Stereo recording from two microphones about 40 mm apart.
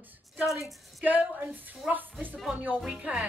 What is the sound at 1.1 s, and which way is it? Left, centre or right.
A woman's voice, right.